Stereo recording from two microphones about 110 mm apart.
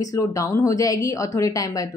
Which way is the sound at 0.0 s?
30° left (ahead or behind).